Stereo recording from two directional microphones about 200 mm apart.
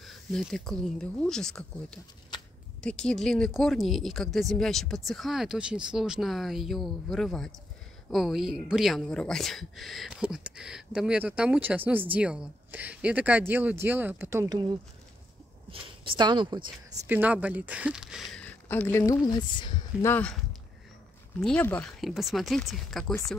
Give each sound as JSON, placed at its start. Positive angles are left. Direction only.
{"t": 0.0, "sound": "a woman's voice", "side_deg": 0}
{"t": 2.8, "sound": "a woman's voice", "side_deg": 5}
{"t": 17.1, "sound": "a woman's voice", "side_deg": -5}
{"t": 20.1, "sound": "speech", "side_deg": 5}
{"t": 21.4, "sound": "a woman's voice", "side_deg": 5}